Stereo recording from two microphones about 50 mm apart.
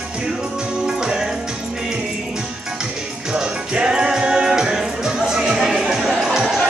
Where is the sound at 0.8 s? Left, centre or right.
Centre.